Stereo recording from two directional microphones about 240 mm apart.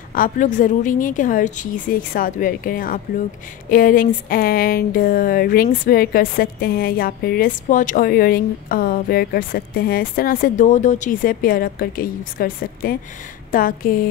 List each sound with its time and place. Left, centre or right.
0.1 s speech: left